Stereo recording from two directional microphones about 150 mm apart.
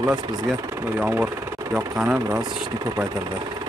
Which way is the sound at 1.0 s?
10° right (ahead or behind).